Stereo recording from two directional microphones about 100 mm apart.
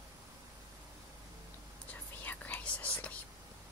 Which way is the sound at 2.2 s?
15° left (ahead or behind).